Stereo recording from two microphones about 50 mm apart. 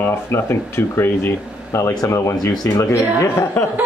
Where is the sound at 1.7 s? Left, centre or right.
Left.